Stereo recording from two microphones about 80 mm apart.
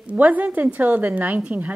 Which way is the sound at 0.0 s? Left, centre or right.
Centre.